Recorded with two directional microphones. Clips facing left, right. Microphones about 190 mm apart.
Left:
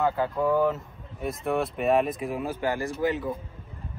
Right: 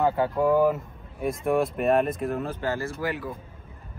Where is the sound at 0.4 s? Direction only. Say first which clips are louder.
Right 3 dB; 10° right (ahead or behind); by 3.3 s 20° left (ahead or behind).